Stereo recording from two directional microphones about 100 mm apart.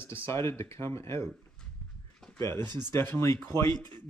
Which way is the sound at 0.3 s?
25° left (ahead or behind).